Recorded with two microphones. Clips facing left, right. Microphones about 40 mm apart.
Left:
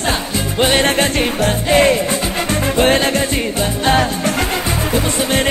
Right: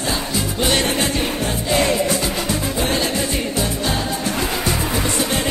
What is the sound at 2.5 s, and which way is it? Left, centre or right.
Music, left.